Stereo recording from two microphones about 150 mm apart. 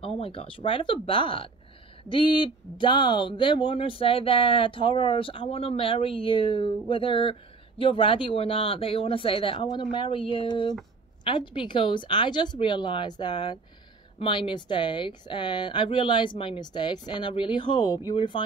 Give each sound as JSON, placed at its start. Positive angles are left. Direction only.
{"t": 0.0, "sound": "speech", "side_deg": 40}